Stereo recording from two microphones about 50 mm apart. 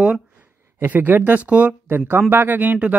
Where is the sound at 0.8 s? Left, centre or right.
Right.